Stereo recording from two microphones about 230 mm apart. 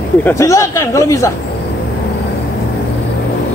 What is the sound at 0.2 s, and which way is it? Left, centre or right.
Speech, centre.